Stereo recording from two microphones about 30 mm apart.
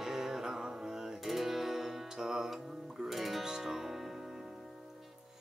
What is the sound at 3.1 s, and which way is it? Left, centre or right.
Music, centre.